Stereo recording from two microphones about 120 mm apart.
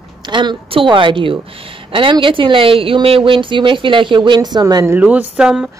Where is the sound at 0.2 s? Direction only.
40° right (ahead or behind).